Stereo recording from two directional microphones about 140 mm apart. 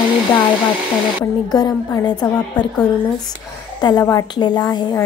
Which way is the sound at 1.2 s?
30° left (ahead or behind).